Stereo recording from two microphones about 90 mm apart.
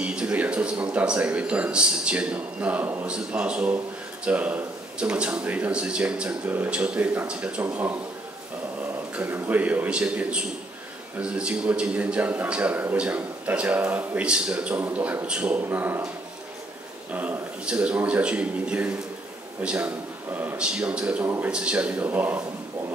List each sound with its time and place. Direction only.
0.0 s a man's voice: 10° right (ahead or behind)
9.2 s speech: 20° right (ahead or behind)
17.1 s speech: 20° right (ahead or behind)
21.2 s a man's voice: 20° right (ahead or behind)
21.5 s speech: 10° right (ahead or behind)